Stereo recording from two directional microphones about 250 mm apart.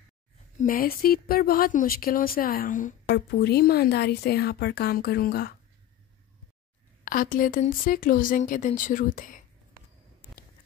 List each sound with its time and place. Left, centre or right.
0.6 s speech: left
7.1 s speech: left